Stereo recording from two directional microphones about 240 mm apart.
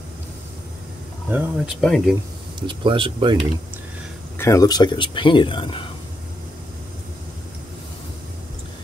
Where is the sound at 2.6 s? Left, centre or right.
Centre.